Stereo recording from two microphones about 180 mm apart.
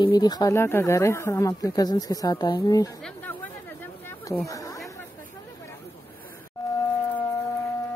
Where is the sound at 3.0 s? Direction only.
10° left (ahead or behind).